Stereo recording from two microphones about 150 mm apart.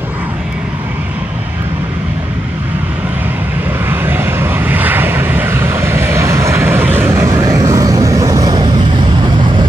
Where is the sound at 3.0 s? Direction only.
10° right (ahead or behind).